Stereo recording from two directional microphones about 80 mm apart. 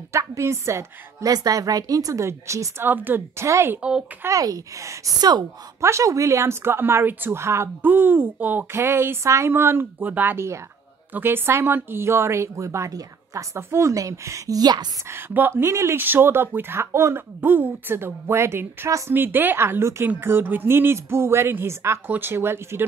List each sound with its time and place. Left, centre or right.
0.1 s a woman's voice: right
1.3 s a woman's voice: right
2.8 s a woman's voice: right
4.3 s a woman's voice: right
15.0 s a woman's voice: right
17.4 s speech: right
18.9 s a woman's voice: right
19.1 s a woman's voice: right